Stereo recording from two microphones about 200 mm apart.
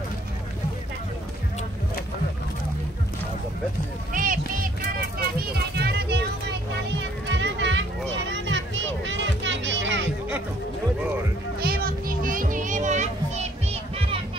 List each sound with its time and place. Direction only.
4.1 s a sound: 40° right (ahead or behind)
5.4 s children playing: 50° right (ahead or behind)
7.2 s music: 65° right (ahead or behind)
11.6 s children playing: 50° right (ahead or behind); by 14.2 s 30° right (ahead or behind)